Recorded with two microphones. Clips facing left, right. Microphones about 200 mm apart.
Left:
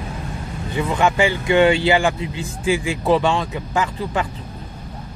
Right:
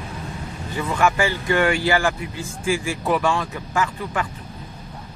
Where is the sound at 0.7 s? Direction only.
20° left (ahead or behind).